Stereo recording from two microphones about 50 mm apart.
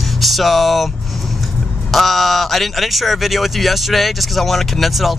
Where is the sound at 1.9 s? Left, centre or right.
Centre.